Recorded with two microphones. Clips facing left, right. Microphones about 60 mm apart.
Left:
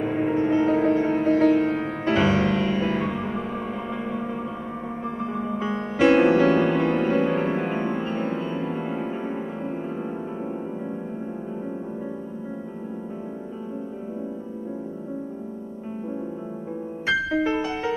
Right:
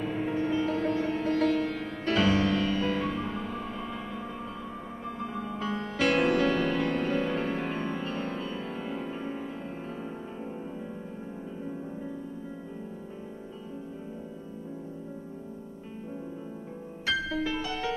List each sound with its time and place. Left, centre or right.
0.0 s music: left
5.2 s music: left
17.0 s music: left